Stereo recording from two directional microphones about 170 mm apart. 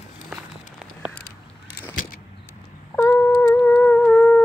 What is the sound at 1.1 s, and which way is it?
Crow, 70° left (ahead or behind).